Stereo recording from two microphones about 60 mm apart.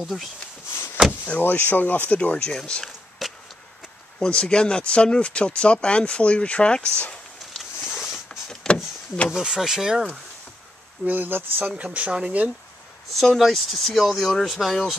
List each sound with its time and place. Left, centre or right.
0.0 s speech: centre
1.2 s speech: left
2.8 s a sound: centre
4.2 s speech: centre
7.8 s zipper: centre
8.3 s power windows: centre
9.3 s speech: centre
11.1 s speech: right
11.8 s speech: right
13.1 s speech: centre